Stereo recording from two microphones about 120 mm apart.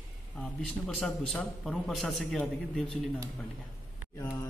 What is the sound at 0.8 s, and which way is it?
A man's voice, 5° left (ahead or behind).